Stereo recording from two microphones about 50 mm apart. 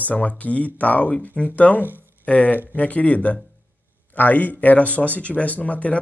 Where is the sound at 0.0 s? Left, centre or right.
Left.